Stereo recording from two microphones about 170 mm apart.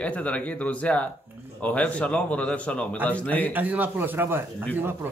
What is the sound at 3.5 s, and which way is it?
Speech, 10° right (ahead or behind).